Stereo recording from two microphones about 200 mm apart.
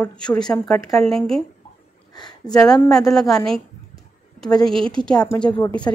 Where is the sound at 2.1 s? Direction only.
20° left (ahead or behind).